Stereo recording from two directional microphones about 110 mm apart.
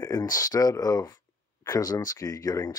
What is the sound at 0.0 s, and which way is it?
Speech, 30° left (ahead or behind).